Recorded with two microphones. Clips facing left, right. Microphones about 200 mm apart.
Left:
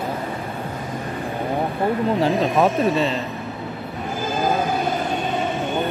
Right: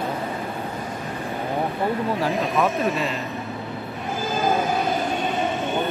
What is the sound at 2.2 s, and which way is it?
Speech, 30° left (ahead or behind).